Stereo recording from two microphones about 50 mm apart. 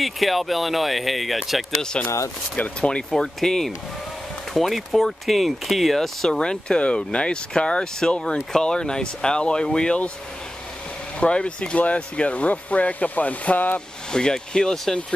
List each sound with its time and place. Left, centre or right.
0.0 s speech: centre
1.8 s speech: centre
3.1 s speech: centre
11.1 s speech: left
13.7 s speech: centre